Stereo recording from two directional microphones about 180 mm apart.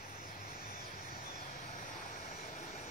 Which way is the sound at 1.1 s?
50° left (ahead or behind).